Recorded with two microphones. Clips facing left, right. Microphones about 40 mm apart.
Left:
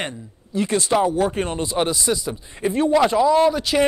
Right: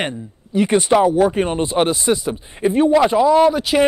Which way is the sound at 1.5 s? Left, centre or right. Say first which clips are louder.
Right 5 dB; right.